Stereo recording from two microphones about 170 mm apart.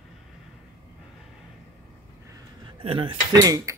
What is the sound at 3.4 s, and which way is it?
Cutlery, 20° right (ahead or behind).